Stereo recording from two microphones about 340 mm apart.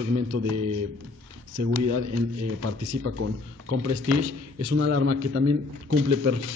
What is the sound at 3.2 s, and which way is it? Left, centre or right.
Speech, right.